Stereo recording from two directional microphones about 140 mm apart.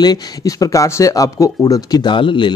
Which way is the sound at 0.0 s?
25° left (ahead or behind).